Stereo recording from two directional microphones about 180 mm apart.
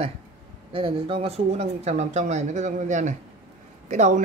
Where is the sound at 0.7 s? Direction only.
30° right (ahead or behind).